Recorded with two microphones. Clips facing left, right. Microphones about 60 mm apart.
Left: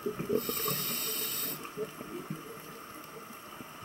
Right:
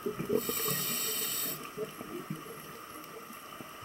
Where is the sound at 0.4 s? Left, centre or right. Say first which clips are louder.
Even; left.